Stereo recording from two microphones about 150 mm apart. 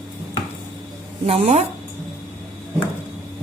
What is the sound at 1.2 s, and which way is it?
Speech, 45° right (ahead or behind).